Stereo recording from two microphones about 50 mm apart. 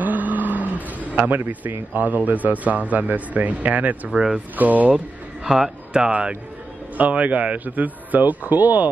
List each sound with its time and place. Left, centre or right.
0.0 s a sound: right
1.5 s speech: right
4.1 s speech: centre
4.6 s speech: right
4.9 s speech: centre
7.0 s speech: right